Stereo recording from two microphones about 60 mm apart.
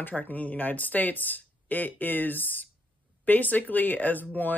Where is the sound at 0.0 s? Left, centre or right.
Left.